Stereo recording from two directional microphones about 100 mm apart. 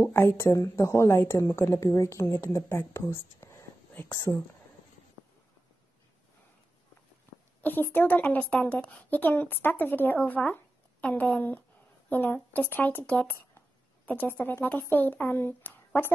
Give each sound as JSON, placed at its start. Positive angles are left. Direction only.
{"t": 0.1, "sound": "a woman's voice", "side_deg": 25}
{"t": 4.3, "sound": "a woman's voice", "side_deg": 15}
{"t": 7.6, "sound": "a woman's voice", "side_deg": 20}